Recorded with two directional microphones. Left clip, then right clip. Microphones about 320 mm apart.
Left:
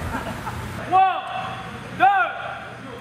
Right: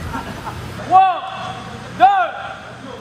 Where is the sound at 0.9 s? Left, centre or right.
Right.